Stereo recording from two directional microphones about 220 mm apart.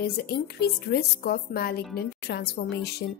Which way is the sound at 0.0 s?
45° left (ahead or behind).